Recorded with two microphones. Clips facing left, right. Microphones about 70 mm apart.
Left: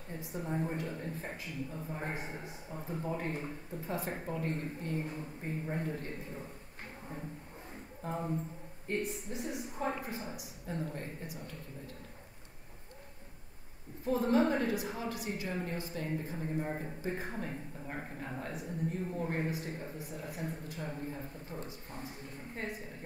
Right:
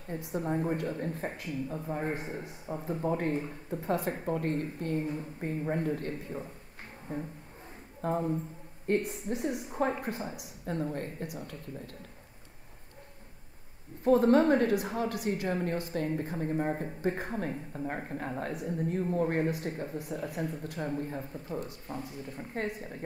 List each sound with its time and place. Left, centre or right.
0.3 s a woman's voice: right
2.7 s a woman's voice: right
8.0 s a woman's voice: right
14.0 s a woman's voice: right